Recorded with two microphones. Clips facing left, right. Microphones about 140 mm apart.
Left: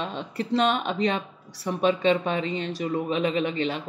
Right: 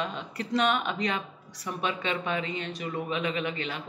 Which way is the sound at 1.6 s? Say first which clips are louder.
Left 9 dB; 35° left (ahead or behind).